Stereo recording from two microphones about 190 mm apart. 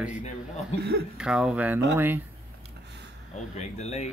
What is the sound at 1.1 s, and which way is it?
Speech, 5° right (ahead or behind).